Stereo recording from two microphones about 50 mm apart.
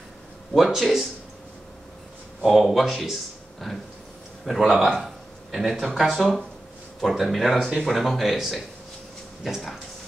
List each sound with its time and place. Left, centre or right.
0.7 s speech: centre
2.4 s speech: centre
4.5 s speech: centre
5.0 s a sound: centre
5.9 s speech: centre